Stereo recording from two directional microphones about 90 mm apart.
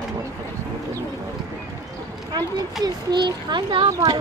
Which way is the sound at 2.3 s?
50° right (ahead or behind).